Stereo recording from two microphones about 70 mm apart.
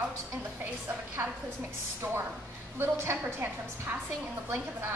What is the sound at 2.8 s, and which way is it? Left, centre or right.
Speech, right.